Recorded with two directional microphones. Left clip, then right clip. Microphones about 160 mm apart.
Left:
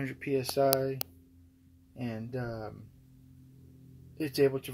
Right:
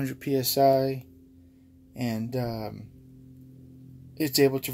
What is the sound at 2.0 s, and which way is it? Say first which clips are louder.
Speech: right 7 dB; 15° right (ahead or behind).